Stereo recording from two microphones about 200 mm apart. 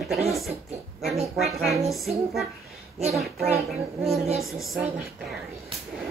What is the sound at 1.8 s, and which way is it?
A woman's voice, centre (ahead or behind).